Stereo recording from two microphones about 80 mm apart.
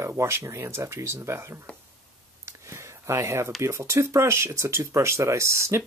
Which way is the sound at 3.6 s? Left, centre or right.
Right.